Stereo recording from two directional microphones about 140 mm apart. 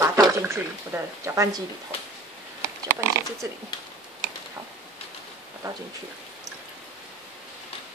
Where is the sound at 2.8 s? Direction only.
20° right (ahead or behind).